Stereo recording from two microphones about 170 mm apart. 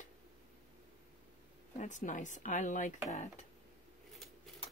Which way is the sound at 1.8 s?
45° left (ahead or behind).